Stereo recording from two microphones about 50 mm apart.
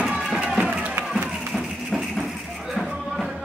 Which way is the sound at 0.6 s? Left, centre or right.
Right.